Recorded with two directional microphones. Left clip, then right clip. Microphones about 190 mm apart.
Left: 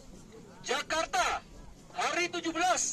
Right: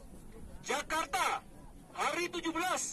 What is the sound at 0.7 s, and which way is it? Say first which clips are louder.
A man's voice: left 3 dB; 70° right (ahead or behind).